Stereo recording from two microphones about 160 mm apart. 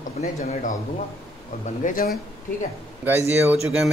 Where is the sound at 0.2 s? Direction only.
50° left (ahead or behind).